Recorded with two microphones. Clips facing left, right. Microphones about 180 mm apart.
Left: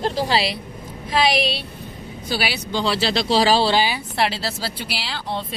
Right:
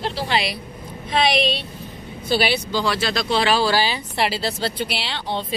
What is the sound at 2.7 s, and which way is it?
Speech, 30° left (ahead or behind).